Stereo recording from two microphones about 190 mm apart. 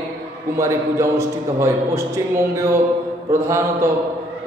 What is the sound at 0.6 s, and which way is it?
A man's voice, 15° right (ahead or behind).